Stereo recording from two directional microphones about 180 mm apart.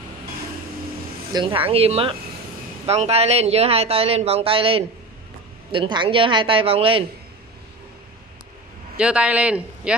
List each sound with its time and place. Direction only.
1.3 s a man's voice: 30° right (ahead or behind)
8.9 s speech: 5° right (ahead or behind)